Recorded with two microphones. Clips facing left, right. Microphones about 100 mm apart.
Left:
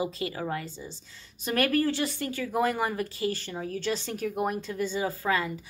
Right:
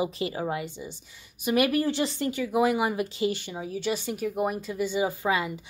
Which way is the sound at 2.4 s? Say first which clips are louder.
Right 3 dB; 10° right (ahead or behind).